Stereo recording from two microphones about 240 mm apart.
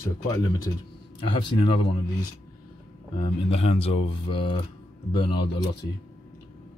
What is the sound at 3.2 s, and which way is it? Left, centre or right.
Speech, left.